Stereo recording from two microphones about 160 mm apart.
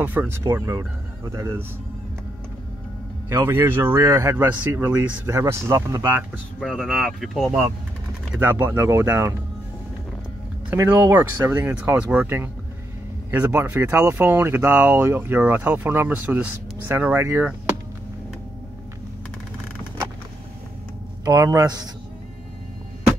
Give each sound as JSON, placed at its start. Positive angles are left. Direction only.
{"t": 0.0, "sound": "speech", "side_deg": -10}
{"t": 3.3, "sound": "speech", "side_deg": -15}
{"t": 6.6, "sound": "speech", "side_deg": 0}
{"t": 8.3, "sound": "speech", "side_deg": -10}
{"t": 10.7, "sound": "speech", "side_deg": -10}
{"t": 21.2, "sound": "speech", "side_deg": -25}